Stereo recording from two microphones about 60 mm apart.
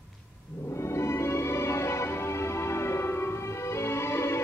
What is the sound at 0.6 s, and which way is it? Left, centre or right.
Music, left.